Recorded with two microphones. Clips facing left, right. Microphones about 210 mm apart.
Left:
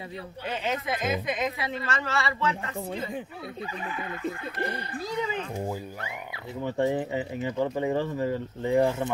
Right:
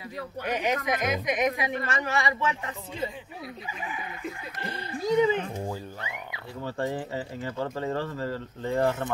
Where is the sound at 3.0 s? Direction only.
55° left (ahead or behind).